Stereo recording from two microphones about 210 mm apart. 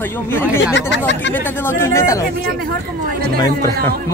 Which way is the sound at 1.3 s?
10° left (ahead or behind).